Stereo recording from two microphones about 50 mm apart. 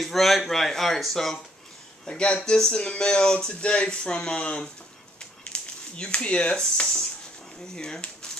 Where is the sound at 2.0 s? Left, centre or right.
Centre.